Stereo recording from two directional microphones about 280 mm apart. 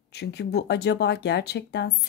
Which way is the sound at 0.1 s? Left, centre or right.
Left.